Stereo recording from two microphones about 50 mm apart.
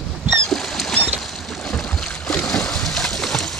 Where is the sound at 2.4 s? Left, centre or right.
Centre.